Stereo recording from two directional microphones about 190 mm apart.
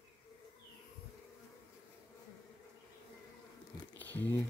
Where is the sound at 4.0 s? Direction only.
10° left (ahead or behind).